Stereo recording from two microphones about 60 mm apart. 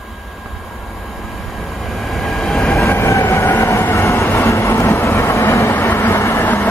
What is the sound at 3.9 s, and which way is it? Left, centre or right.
Vehicle, left.